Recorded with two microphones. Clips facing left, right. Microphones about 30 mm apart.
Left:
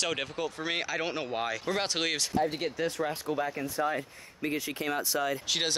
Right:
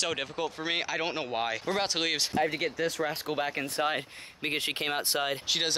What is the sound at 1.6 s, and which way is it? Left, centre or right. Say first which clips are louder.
Speech: right 1 dB; centre.